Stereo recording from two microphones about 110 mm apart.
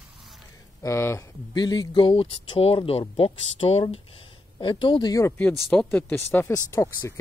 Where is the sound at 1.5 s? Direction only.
40° left (ahead or behind); by 3.8 s 65° left (ahead or behind).